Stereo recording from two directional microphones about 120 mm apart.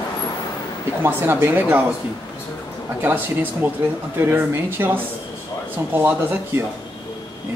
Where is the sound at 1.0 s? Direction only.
20° right (ahead or behind).